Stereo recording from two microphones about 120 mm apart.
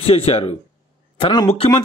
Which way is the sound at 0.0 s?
55° left (ahead or behind).